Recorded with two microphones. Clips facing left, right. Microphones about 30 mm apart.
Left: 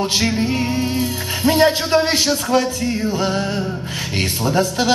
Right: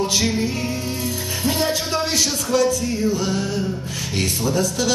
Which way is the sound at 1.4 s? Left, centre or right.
Left.